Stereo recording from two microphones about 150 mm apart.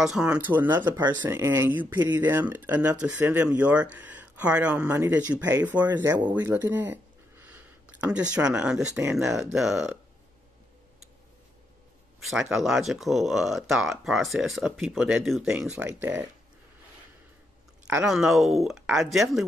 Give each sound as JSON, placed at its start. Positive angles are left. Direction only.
{"t": 0.0, "sound": "speech", "side_deg": -5}
{"t": 6.4, "sound": "a sound", "side_deg": -15}
{"t": 8.9, "sound": "speech", "side_deg": -5}
{"t": 12.3, "sound": "speech", "side_deg": 0}
{"t": 17.8, "sound": "speech", "side_deg": -5}